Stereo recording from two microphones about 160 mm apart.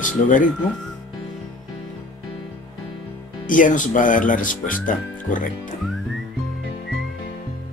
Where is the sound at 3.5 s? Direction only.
55° left (ahead or behind).